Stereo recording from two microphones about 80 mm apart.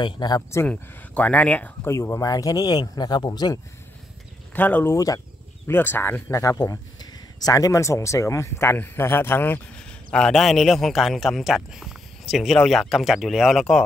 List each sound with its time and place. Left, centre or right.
0.0 s speech: left
0.7 s speech: centre
1.9 s speech: left
4.6 s speech: left
4.9 s speech: left
5.7 s speech: left
6.3 s speech: left
9.8 s speech: centre